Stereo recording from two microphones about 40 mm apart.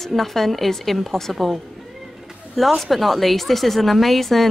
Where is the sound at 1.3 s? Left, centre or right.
Centre.